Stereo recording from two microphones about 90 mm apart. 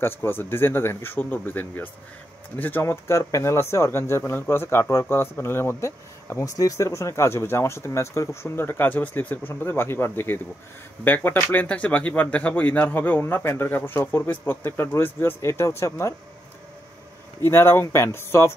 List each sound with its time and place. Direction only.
0.0 s speech: 25° left (ahead or behind)
11.5 s speech: 15° left (ahead or behind); by 16.2 s 30° left (ahead or behind)
17.4 s speech: 25° left (ahead or behind)